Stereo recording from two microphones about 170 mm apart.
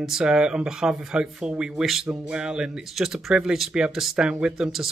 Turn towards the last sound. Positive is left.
turn(degrees=-5)  # may be behind; listen again after turning